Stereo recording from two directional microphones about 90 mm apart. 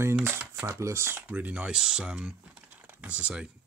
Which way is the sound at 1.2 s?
15° right (ahead or behind).